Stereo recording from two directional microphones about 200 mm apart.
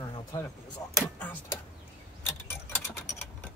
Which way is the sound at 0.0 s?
20° left (ahead or behind).